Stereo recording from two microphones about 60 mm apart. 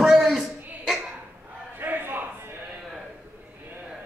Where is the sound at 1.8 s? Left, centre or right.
Right.